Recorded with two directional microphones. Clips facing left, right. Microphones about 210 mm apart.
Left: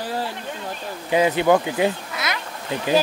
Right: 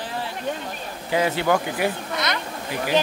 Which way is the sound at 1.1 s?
20° left (ahead or behind).